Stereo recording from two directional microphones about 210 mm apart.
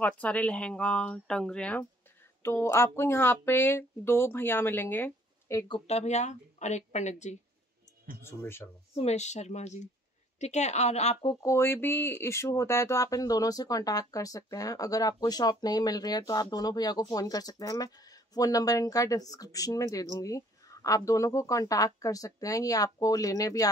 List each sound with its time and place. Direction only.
0.0 s speech: 5° left (ahead or behind)
5.9 s speech: 30° left (ahead or behind)
8.2 s speech: 10° left (ahead or behind)
8.9 s speech: 30° left (ahead or behind)
11.4 s speech: 10° left (ahead or behind)